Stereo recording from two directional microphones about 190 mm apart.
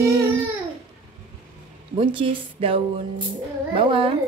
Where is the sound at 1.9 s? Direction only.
25° right (ahead or behind).